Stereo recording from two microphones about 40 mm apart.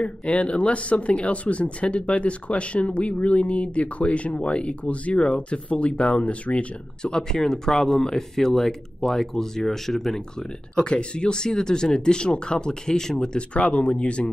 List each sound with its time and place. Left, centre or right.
0.3 s speech: left
7.0 s speech: centre
10.8 s speech: left
13.5 s speech: left